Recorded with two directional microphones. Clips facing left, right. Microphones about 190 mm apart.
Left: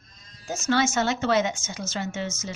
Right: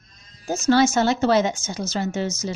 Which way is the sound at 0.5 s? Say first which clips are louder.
Right 6 dB; 35° right (ahead or behind).